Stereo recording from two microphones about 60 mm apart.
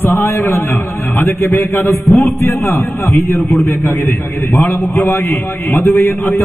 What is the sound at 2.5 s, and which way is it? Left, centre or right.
A man's voice, left.